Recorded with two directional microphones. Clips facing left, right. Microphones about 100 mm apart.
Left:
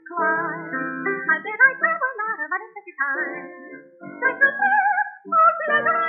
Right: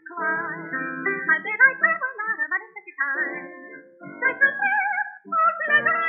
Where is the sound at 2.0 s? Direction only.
30° left (ahead or behind).